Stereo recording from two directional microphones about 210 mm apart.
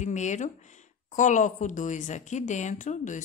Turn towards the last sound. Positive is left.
turn(degrees=35)  # may be behind; listen again after turning